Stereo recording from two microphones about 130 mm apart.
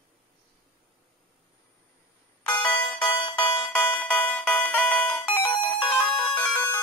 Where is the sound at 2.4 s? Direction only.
10° left (ahead or behind).